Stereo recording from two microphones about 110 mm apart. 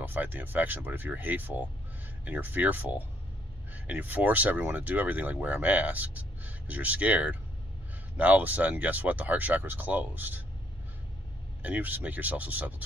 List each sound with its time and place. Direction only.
0.0 s speech: 15° right (ahead or behind)
11.6 s speech: 15° right (ahead or behind)